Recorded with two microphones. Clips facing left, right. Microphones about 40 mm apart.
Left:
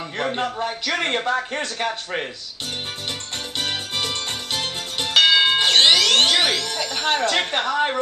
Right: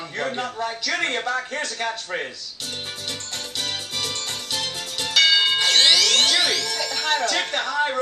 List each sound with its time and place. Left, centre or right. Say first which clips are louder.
0.2 s a man's voice: left 2 dB; left
3.5 s music: left 4 dB; left